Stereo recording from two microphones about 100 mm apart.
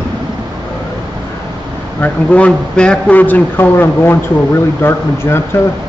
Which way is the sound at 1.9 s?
15° left (ahead or behind).